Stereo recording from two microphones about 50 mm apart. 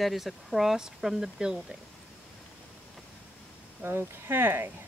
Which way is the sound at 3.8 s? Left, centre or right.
Right.